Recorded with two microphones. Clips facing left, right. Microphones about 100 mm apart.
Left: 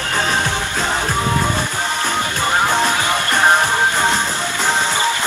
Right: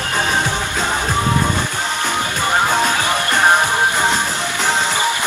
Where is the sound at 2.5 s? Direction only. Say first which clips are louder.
Even; 15° right (ahead or behind).